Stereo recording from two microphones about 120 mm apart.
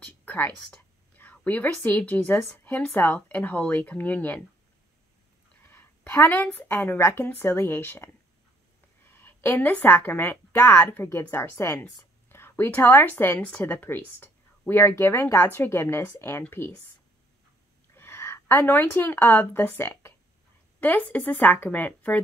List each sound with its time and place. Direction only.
0.0 s a woman's voice: 15° left (ahead or behind)
5.6 s a woman's voice: 20° left (ahead or behind)
17.9 s a woman's voice: 20° left (ahead or behind)